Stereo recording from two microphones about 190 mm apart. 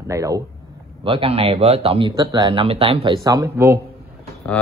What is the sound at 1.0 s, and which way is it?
Speech, 30° right (ahead or behind).